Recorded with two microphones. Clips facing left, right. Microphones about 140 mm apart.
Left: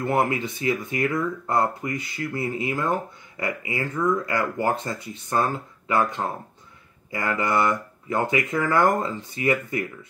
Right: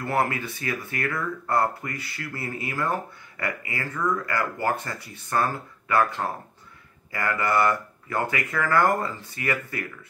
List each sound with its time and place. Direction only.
0.0 s speech: 20° left (ahead or behind)